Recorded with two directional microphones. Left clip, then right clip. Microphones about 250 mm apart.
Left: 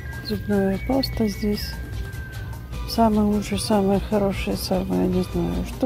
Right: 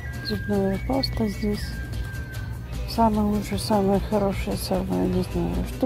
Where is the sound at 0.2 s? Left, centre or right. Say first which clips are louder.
Left 2 dB; centre.